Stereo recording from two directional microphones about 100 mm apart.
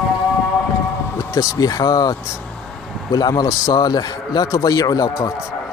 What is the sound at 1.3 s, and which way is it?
A man's voice, 35° left (ahead or behind).